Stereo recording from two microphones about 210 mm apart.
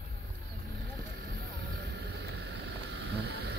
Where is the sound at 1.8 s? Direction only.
55° right (ahead or behind).